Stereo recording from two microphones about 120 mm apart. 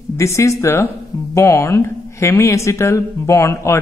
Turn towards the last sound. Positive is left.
turn(degrees=25)  # may be behind; listen again after turning